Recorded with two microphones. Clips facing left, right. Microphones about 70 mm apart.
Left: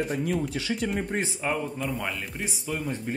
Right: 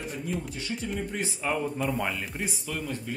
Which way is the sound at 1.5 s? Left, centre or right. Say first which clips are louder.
Right 3 dB; centre.